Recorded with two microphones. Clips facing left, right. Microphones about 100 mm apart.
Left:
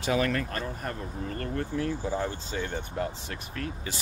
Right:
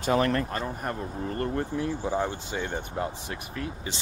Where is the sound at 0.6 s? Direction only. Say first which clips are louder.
Right 3 dB; 25° right (ahead or behind).